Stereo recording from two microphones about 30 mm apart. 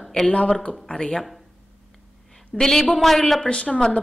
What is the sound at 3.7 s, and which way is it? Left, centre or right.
Speech, centre.